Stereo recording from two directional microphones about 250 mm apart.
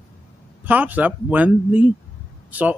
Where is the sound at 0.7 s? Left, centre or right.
Centre.